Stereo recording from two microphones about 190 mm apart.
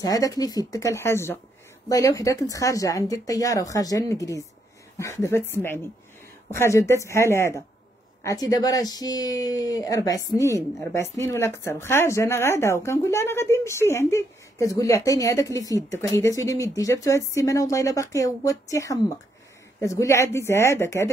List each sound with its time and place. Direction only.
0.0 s speech: 20° left (ahead or behind)